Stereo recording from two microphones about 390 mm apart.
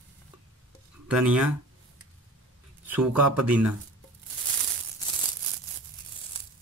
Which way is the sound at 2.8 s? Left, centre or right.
Right.